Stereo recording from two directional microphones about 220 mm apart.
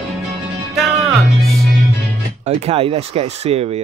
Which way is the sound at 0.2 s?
Centre (ahead or behind).